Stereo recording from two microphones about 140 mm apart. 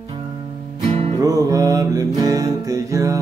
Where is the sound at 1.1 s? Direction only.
25° right (ahead or behind).